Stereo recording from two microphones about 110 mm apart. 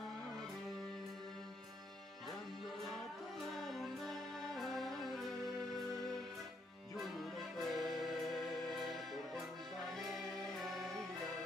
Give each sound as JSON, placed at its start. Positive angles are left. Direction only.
{"t": 3.5, "sound": "music", "side_deg": 0}
{"t": 7.0, "sound": "music", "side_deg": 0}